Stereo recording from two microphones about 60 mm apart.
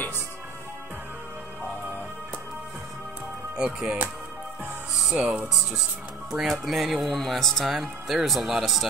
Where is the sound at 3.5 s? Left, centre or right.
Centre.